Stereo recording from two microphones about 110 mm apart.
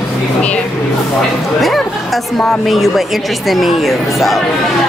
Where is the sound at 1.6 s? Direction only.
Centre (ahead or behind).